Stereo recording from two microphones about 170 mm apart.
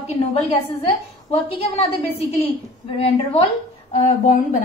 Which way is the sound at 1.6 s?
35° left (ahead or behind).